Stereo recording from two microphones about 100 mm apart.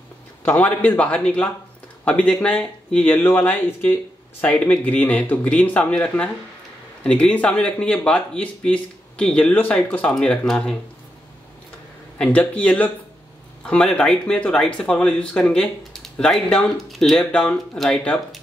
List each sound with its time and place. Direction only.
0.4 s speech: 20° left (ahead or behind)
12.2 s speech: 15° left (ahead or behind)